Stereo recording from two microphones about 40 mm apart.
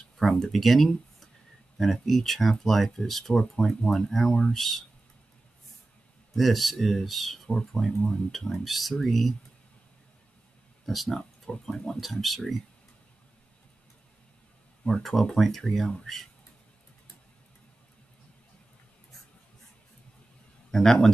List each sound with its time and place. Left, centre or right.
0.2 s speech: centre
6.3 s speech: centre
7.4 s speech: centre
8.3 s speech: centre
10.9 s speech: centre
12.0 s speech: centre
14.9 s speech: centre
20.7 s speech: centre